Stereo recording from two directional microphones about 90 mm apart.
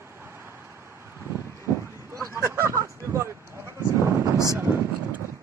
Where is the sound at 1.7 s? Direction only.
20° right (ahead or behind).